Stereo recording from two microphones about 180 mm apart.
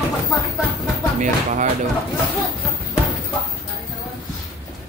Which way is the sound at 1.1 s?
45° right (ahead or behind).